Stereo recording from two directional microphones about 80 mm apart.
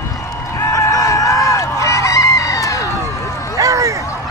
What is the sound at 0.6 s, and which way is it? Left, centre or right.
Fowl, left.